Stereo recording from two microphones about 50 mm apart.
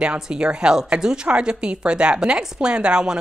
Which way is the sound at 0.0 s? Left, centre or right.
Centre.